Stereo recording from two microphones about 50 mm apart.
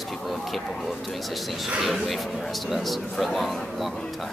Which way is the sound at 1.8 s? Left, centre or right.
Centre.